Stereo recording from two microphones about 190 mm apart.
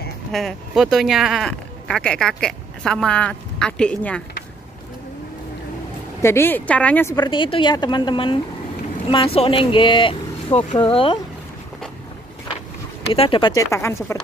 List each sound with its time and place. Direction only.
0.3 s speech: centre (ahead or behind)
6.2 s speech: 10° left (ahead or behind)
7.2 s speech: 25° left (ahead or behind)
13.1 s speech: 30° left (ahead or behind)